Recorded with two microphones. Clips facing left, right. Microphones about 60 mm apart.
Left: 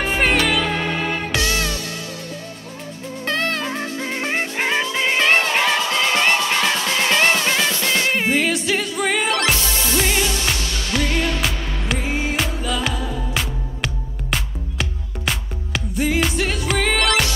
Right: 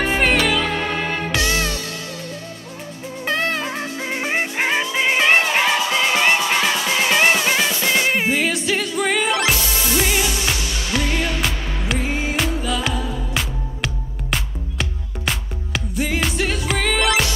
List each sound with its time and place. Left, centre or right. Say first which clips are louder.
0.0 s music: right 1 dB; centre
1.3 s music: right 1 dB; right
3.3 s music: right 1 dB; centre
9.3 s music: even; centre
11.4 s music: even; centre